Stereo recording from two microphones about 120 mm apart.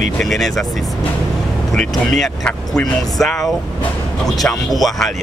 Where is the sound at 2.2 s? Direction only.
5° left (ahead or behind).